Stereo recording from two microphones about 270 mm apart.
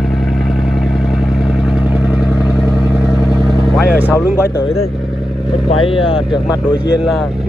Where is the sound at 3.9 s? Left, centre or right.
Centre.